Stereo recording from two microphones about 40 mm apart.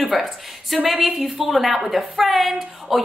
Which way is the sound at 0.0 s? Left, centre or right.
Centre.